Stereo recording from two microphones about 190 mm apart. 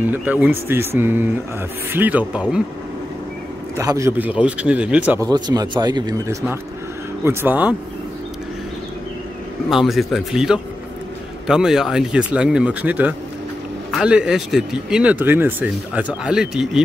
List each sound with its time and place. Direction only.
0.0 s a man's voice: 10° right (ahead or behind)
3.7 s a man's voice: 15° right (ahead or behind)
5.3 s speech: 20° right (ahead or behind)
7.2 s a man's voice: 10° right (ahead or behind)
9.7 s speech: centre (ahead or behind)